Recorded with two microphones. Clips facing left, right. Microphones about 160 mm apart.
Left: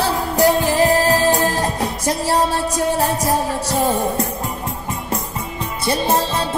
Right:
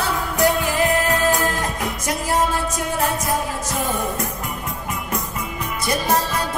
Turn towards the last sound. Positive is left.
turn(degrees=25)  # may be behind; listen again after turning